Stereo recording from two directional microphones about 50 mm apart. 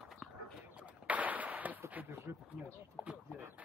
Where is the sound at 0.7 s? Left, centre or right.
Right.